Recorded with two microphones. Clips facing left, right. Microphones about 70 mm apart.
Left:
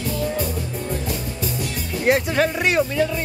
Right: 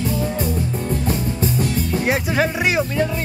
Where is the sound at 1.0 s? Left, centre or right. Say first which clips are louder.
Right 5 dB; right.